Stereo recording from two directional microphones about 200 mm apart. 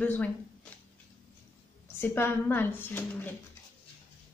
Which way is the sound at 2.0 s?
10° left (ahead or behind).